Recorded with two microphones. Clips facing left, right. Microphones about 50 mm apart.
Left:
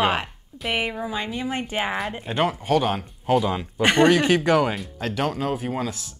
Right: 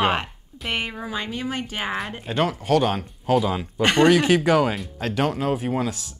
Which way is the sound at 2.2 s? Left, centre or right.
Centre.